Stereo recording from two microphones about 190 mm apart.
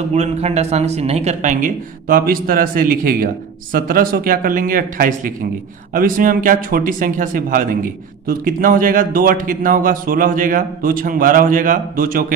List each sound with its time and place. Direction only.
0.1 s a man's voice: 35° right (ahead or behind)